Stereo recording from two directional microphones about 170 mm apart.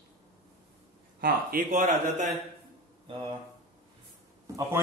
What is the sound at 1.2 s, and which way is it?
Speech, 55° right (ahead or behind).